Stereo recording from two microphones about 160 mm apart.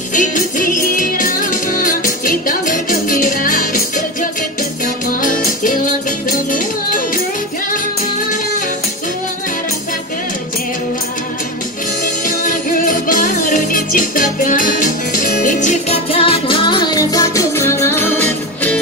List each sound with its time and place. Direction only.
0.1 s music: 55° left (ahead or behind)
12.3 s music: 60° left (ahead or behind); by 18.8 s 10° left (ahead or behind)